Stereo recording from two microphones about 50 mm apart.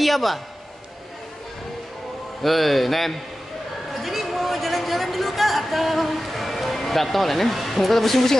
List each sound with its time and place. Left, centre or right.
0.0 s a man's voice: centre
2.4 s speech: centre